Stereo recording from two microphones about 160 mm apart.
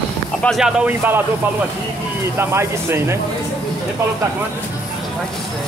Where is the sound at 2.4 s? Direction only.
15° right (ahead or behind).